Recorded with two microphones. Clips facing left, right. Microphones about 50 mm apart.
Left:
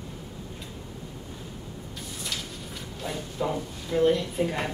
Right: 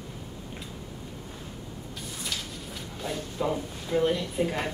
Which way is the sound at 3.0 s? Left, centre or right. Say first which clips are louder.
Even; centre.